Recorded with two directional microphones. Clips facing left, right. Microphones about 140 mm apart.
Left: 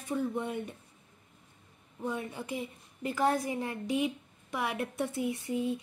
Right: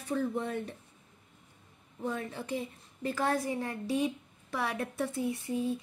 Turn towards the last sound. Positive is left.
turn(degrees=15)  # may be behind; listen again after turning